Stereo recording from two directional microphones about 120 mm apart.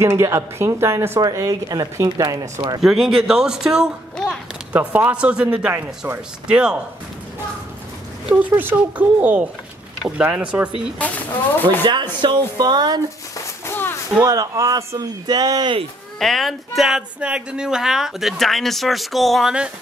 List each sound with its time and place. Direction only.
0.0 s speech: 20° right (ahead or behind)
2.8 s speech: 5° right (ahead or behind)
4.7 s a man's voice: 15° right (ahead or behind)
8.3 s a man's voice: 15° right (ahead or behind)
11.0 s speech: 10° left (ahead or behind)
11.8 s speech: 40° right (ahead or behind)
13.7 s a sound: 20° left (ahead or behind)
14.2 s speech: 30° right (ahead or behind)
16.2 s speech: centre (ahead or behind)